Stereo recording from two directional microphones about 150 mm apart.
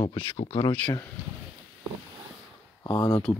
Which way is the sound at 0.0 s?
30° left (ahead or behind).